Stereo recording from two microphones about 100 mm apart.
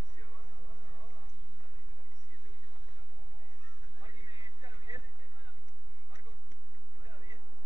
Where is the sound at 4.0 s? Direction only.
40° right (ahead or behind).